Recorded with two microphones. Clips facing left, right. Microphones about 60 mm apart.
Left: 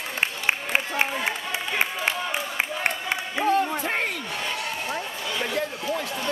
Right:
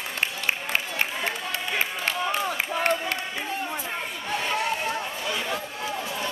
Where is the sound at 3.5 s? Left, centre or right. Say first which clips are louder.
Left 10 dB; left.